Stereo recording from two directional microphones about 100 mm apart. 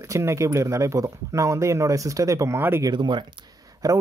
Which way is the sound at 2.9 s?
50° right (ahead or behind).